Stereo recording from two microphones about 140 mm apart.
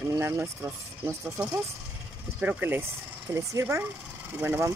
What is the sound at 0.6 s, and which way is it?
Speech, 20° right (ahead or behind).